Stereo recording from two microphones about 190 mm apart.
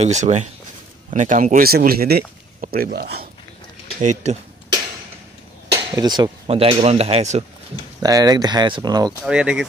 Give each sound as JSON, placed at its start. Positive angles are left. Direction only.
{"t": 0.0, "sound": "speech", "side_deg": -35}
{"t": 4.0, "sound": "speech", "side_deg": -40}
{"t": 5.7, "sound": "speech", "side_deg": -20}
{"t": 8.0, "sound": "speech", "side_deg": -20}
{"t": 9.2, "sound": "speech", "side_deg": -5}